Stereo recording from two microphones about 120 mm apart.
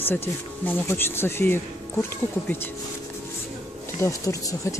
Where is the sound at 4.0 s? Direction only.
25° left (ahead or behind).